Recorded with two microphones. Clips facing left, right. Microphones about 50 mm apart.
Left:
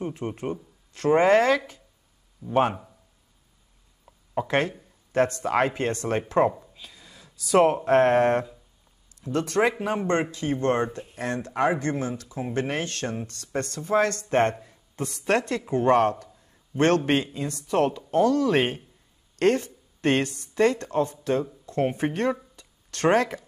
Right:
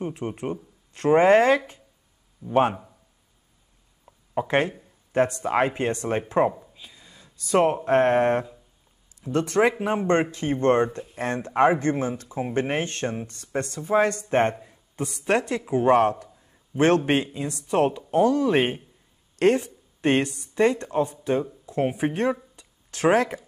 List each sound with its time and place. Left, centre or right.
0.2 s speech: centre
0.9 s speech: right
2.7 s speech: centre
4.5 s speech: right
6.5 s a sound: centre
7.5 s speech: centre
9.3 s a man's voice: right; by 17.6 s centre
17.6 s speech: right
21.5 s speech: centre